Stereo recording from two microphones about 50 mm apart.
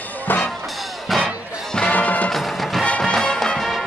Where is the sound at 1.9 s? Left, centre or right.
Left.